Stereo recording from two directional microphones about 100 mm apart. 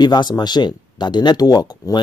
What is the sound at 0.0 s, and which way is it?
Speech, 45° left (ahead or behind).